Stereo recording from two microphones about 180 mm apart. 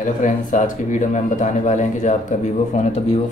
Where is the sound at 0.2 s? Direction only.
45° left (ahead or behind).